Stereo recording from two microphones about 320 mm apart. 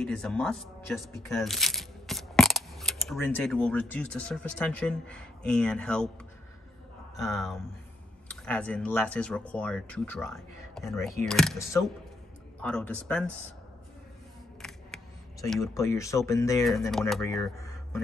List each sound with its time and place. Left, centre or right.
0.0 s speech: centre
7.2 s speech: centre
15.5 s speech: centre